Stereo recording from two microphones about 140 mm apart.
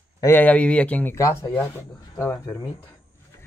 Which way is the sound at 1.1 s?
20° left (ahead or behind).